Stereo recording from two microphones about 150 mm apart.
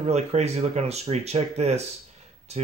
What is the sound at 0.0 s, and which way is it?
Speech, 45° right (ahead or behind).